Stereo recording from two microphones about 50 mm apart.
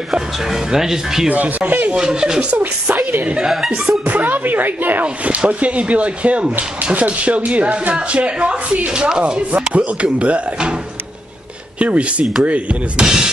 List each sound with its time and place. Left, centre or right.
0.1 s speech: centre
1.3 s speech: right
1.9 s speech: centre
2.6 s speech: right
5.0 s speech: right
8.9 s speech: centre
9.2 s speech: right
11.8 s speech: right
13.0 s speech: centre